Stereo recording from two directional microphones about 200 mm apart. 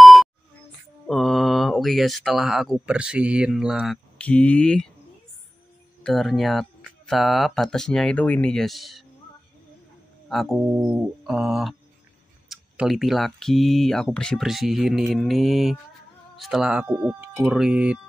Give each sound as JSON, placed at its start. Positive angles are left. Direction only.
{"t": 0.0, "sound": "a sound", "side_deg": 0}
{"t": 1.0, "sound": "speech", "side_deg": 0}
{"t": 6.0, "sound": "speech", "side_deg": 0}
{"t": 10.3, "sound": "speech", "side_deg": 0}